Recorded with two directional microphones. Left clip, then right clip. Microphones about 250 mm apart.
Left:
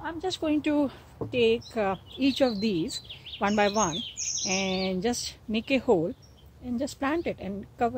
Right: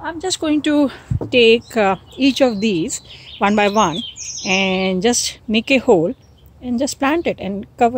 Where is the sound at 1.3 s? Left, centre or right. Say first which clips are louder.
Right 13 dB; right.